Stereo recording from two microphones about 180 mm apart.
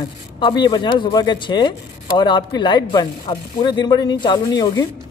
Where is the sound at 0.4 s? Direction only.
25° left (ahead or behind).